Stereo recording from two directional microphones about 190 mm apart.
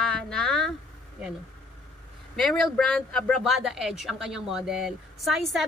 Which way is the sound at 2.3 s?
5° left (ahead or behind).